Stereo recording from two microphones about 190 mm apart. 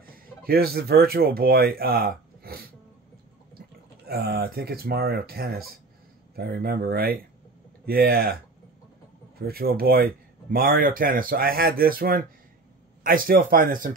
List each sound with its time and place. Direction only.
0.0 s speech: 50° right (ahead or behind)
4.1 s speech: 55° right (ahead or behind)
9.4 s speech: 55° right (ahead or behind)